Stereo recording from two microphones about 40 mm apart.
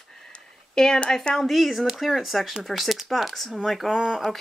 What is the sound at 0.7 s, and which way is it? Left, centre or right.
Speech, centre.